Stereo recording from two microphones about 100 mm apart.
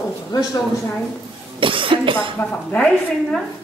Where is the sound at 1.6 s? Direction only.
60° right (ahead or behind).